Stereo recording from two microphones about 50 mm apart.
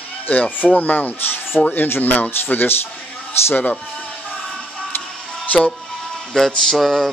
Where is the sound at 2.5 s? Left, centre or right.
Left.